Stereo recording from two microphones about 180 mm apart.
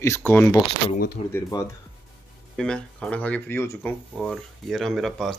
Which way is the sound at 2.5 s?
5° left (ahead or behind).